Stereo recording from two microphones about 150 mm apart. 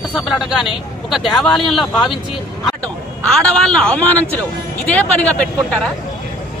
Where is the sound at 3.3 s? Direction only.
5° left (ahead or behind).